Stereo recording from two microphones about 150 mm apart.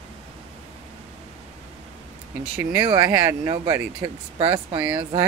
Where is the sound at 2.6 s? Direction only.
20° right (ahead or behind).